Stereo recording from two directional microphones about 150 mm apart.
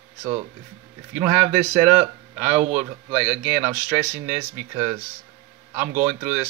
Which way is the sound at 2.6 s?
45° right (ahead or behind).